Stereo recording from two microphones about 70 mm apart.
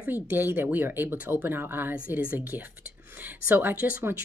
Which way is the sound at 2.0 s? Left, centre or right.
Right.